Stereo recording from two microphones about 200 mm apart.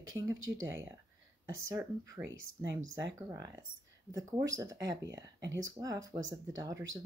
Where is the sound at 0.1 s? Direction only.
15° right (ahead or behind).